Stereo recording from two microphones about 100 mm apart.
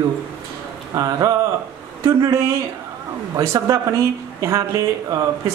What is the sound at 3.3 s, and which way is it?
A man's voice, 35° right (ahead or behind).